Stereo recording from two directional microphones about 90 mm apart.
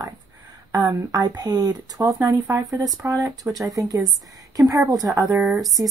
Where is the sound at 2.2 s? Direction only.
35° right (ahead or behind).